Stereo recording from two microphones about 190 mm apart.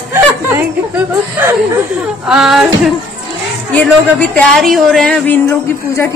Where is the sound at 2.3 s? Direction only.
Centre (ahead or behind).